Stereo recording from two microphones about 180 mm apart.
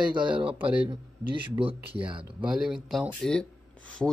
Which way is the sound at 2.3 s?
5° right (ahead or behind).